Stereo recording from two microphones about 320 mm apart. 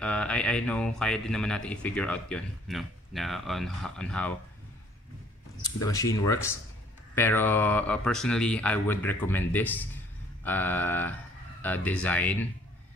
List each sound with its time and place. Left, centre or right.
0.0 s speech: centre
5.8 s speech: centre